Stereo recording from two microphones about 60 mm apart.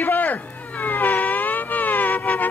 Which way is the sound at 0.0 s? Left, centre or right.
Left.